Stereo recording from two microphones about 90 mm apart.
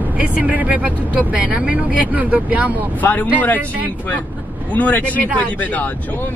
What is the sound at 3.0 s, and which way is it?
Speech, 20° left (ahead or behind).